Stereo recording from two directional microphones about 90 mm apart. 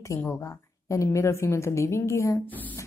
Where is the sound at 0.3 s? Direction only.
40° left (ahead or behind).